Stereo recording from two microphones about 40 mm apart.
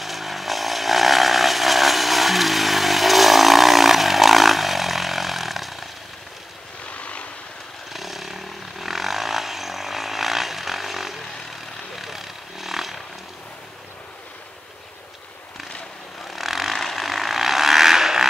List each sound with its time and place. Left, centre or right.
0.0 s vehicle: centre
6.9 s vehicle: left
7.9 s vehicle: centre
16.3 s vehicle: centre